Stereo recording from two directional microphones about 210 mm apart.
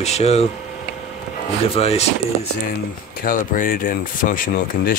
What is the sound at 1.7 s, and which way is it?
Speech, 30° left (ahead or behind).